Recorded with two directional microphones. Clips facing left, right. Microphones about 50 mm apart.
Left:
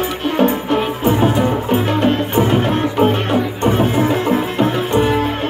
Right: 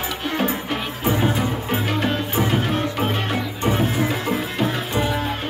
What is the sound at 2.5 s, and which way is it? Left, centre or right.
Music, left.